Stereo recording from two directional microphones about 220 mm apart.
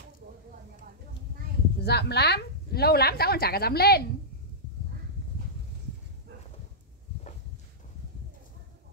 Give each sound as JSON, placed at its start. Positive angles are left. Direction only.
{"t": 1.8, "sound": "a woman's voice", "side_deg": 50}